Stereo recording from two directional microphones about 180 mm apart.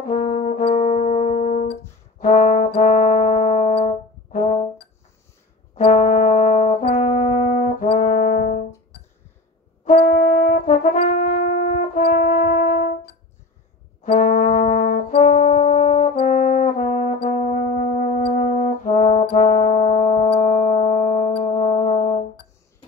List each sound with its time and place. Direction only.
0.1 s brass instrument: 40° left (ahead or behind)
5.8 s brass instrument: 40° left (ahead or behind)
9.8 s brass instrument: 45° left (ahead or behind)